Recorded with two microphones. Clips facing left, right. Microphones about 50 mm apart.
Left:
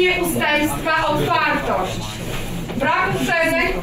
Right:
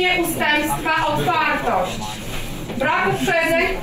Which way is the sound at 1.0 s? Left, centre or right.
Right.